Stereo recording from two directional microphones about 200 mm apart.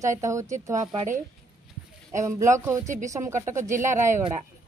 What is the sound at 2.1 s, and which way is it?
Speech, 15° right (ahead or behind).